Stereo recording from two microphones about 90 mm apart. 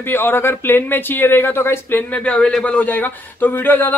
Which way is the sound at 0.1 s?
25° left (ahead or behind).